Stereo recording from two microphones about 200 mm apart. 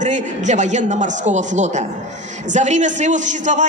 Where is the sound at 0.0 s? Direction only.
35° right (ahead or behind).